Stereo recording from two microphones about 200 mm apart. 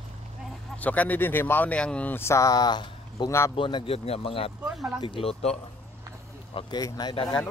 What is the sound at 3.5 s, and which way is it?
Speech, 25° left (ahead or behind).